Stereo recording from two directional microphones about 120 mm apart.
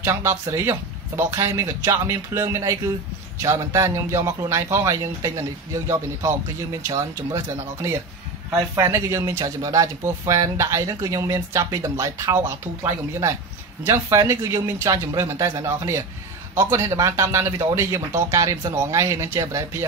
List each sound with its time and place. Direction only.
0.0 s speech: 20° right (ahead or behind)